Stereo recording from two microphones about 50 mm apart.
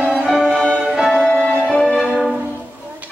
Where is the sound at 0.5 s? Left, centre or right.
Centre.